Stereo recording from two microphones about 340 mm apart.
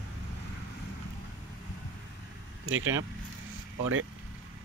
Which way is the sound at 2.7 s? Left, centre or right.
Right.